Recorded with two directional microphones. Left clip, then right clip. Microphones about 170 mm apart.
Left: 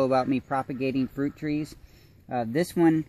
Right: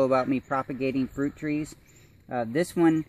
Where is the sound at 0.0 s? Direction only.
25° left (ahead or behind).